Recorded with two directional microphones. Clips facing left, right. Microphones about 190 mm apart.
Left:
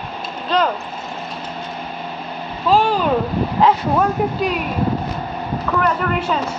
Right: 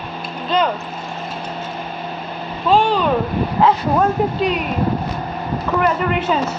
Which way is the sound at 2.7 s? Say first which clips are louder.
Right 1 dB; centre (ahead or behind).